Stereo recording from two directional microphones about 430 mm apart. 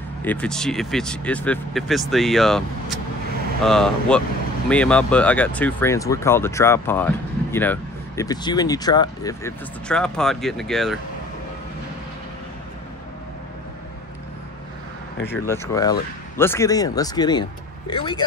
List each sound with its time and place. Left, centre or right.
0.2 s speech: centre
15.4 s speech: centre